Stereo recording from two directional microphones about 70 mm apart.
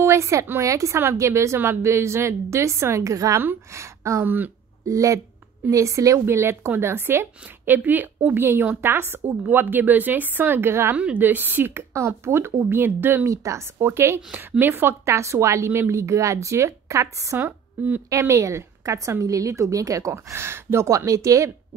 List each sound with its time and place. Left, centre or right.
0.0 s a woman's voice: right
3.3 s a woman's voice: right
4.2 s a woman's voice: right
4.8 s a woman's voice: right
11.1 s a woman's voice: right
13.2 s a woman's voice: right